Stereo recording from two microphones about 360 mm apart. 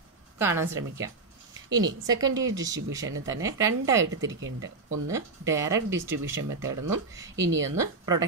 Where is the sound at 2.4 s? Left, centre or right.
Right.